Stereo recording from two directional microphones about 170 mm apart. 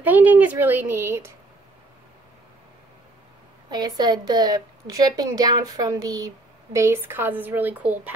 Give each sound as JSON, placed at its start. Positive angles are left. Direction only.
{"t": 0.0, "sound": "speech", "side_deg": -10}
{"t": 3.7, "sound": "a woman's voice", "side_deg": -25}